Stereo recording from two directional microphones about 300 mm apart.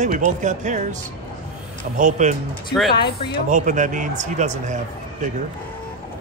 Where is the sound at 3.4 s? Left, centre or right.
Right.